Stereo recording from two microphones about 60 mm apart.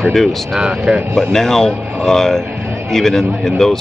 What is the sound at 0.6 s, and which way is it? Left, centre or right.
Speech, centre.